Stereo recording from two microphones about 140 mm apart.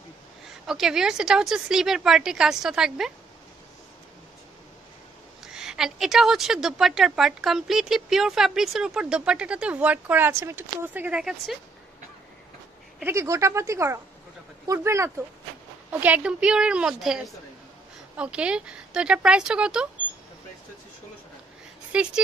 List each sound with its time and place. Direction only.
0.7 s a woman's voice: 5° right (ahead or behind)
5.4 s a woman's voice: 5° right (ahead or behind)
13.0 s a woman's voice: 20° right (ahead or behind)
21.9 s a woman's voice: 5° right (ahead or behind)